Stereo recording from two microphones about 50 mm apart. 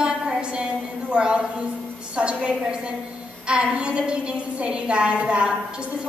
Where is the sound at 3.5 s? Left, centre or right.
Centre.